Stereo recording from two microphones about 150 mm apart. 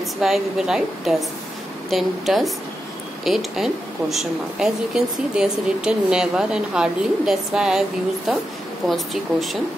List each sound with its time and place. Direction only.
0.2 s a woman's voice: 5° right (ahead or behind)